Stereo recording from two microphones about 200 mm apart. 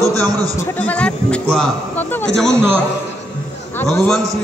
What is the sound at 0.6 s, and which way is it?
A man's voice, 10° left (ahead or behind).